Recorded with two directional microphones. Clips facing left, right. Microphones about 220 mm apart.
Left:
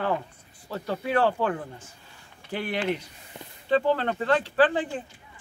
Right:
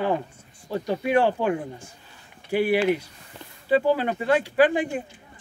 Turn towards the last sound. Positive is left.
turn(degrees=-10)  # may be behind; listen again after turning